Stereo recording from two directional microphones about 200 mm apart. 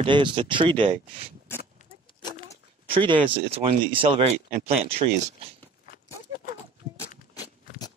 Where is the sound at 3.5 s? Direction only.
30° right (ahead or behind).